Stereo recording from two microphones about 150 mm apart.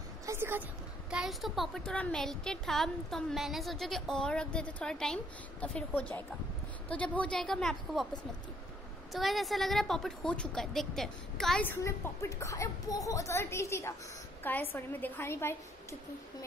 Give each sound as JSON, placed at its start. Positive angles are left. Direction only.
{"t": 0.3, "sound": "a sound", "side_deg": -15}
{"t": 1.1, "sound": "speech", "side_deg": 0}
{"t": 9.1, "sound": "speech", "side_deg": 0}
{"t": 11.7, "sound": "a woman's voice", "side_deg": 15}